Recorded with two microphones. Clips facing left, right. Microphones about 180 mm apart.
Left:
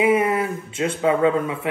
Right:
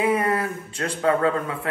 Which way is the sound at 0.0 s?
20° left (ahead or behind).